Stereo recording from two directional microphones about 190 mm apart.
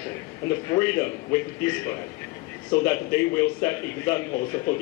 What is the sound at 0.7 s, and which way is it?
Speech, 15° left (ahead or behind).